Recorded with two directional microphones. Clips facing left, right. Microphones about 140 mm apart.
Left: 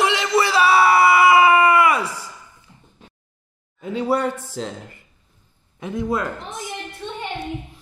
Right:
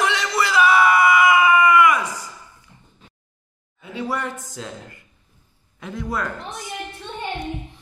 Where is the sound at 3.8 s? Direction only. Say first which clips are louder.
Left 6 dB; 35° left (ahead or behind).